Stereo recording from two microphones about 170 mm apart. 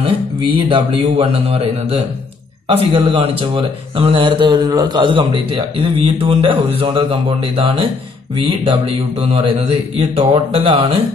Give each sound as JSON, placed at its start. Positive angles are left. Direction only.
{"t": 0.6, "sound": "speech", "side_deg": -30}